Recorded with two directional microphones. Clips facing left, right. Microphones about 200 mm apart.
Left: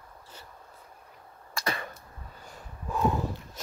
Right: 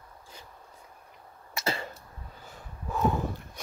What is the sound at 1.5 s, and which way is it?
Cough, 25° right (ahead or behind).